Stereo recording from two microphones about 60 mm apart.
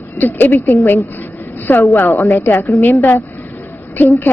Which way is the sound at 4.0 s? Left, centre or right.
Left.